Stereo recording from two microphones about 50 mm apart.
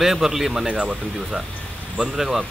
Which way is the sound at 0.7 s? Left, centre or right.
Right.